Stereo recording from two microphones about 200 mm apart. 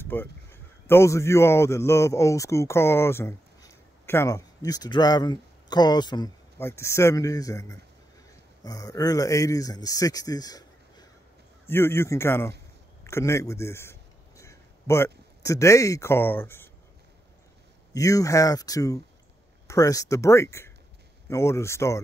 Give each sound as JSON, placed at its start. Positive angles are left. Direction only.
{"t": 0.0, "sound": "speech", "side_deg": 10}
{"t": 17.9, "sound": "speech", "side_deg": 15}